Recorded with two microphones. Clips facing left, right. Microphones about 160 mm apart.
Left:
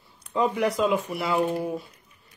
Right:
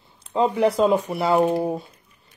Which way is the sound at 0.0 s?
25° right (ahead or behind).